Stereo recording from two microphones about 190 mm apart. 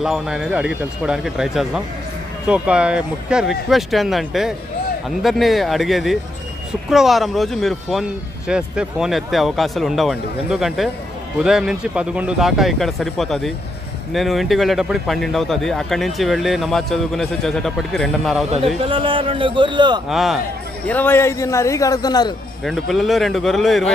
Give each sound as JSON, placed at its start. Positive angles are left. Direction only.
{"t": 0.0, "sound": "speech", "side_deg": -5}
{"t": 18.9, "sound": "a man's voice", "side_deg": -25}
{"t": 20.1, "sound": "speech", "side_deg": 0}
{"t": 20.8, "sound": "a man's voice", "side_deg": 10}
{"t": 22.7, "sound": "speech", "side_deg": 0}